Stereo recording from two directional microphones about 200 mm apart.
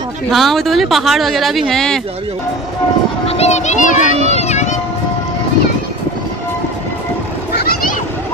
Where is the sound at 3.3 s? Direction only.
35° left (ahead or behind).